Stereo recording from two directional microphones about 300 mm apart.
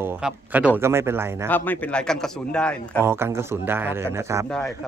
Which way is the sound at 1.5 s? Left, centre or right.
Centre.